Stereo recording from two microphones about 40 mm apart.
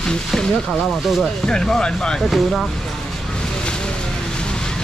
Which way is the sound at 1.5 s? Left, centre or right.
Centre.